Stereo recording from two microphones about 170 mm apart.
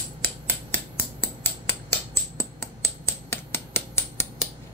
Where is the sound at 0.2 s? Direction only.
15° left (ahead or behind).